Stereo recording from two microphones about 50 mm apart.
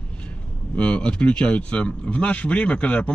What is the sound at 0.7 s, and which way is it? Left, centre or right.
Speech, left.